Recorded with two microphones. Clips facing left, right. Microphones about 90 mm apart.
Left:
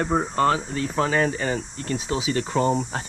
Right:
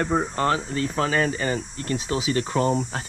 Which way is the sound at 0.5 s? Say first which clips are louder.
Left 1 dB; 20° left (ahead or behind).